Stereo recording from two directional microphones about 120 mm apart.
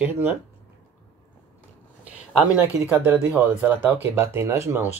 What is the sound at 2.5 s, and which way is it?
Speech, 15° right (ahead or behind).